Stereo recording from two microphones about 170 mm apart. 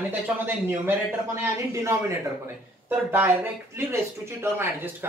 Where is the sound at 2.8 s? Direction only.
10° right (ahead or behind).